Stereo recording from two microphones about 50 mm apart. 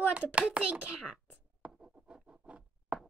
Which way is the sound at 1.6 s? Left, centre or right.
Right.